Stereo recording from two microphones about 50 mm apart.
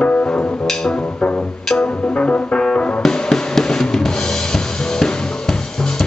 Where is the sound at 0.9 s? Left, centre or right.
Left.